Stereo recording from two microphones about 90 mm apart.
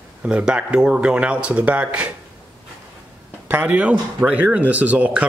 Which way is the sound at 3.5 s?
15° right (ahead or behind).